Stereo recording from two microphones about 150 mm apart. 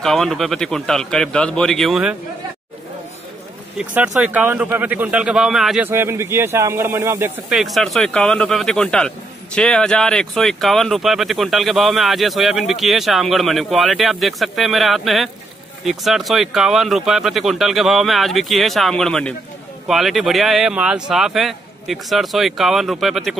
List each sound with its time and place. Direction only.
0.0 s speech: 5° left (ahead or behind)
3.7 s speech: 10° right (ahead or behind)
5.9 s speech: 15° right (ahead or behind)
7.5 s speech: centre (ahead or behind)